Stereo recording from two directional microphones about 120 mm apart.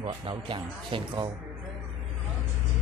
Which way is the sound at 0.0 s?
45° right (ahead or behind).